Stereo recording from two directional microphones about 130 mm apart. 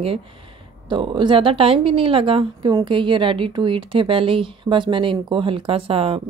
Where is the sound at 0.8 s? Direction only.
40° right (ahead or behind).